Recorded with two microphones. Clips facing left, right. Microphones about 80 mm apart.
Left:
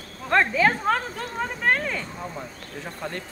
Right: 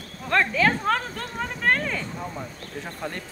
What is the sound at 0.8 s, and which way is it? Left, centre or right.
Speech, centre.